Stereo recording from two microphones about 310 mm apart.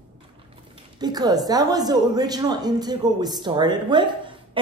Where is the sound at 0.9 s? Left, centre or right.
Centre.